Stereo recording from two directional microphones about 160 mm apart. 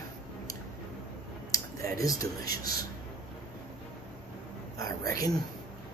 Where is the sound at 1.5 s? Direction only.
20° left (ahead or behind).